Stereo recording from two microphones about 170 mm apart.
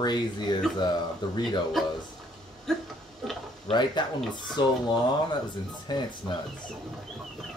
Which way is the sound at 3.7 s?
25° left (ahead or behind).